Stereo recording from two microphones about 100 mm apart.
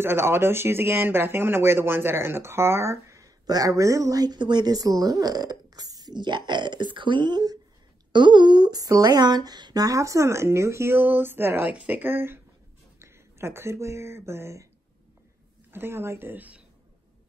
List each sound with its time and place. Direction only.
0.0 s speech: 25° right (ahead or behind)
15.7 s speech: 25° right (ahead or behind)